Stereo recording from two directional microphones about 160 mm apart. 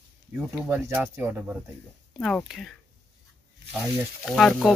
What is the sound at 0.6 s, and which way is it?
Speech, 15° right (ahead or behind).